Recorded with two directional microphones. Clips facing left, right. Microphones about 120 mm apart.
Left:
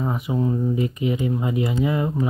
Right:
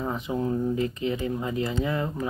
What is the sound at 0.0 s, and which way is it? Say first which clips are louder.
Speech: left 4 dB; 10° left (ahead or behind).